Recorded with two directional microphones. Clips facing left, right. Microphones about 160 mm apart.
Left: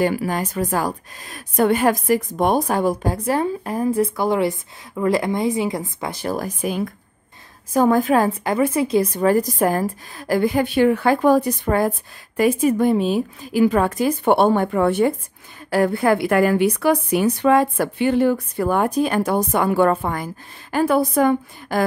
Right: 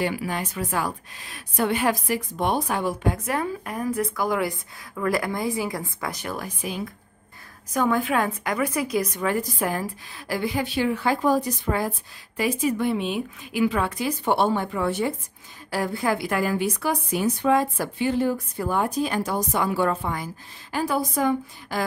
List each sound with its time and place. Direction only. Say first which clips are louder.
0.0 s a woman's voice: left 6 dB; 45° left (ahead or behind)
7.7 s a woman's voice: left 7 dB; 40° left (ahead or behind); by 21.8 s 55° left (ahead or behind)